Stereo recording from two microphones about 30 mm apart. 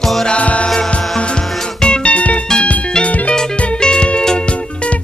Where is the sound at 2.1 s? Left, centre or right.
Left.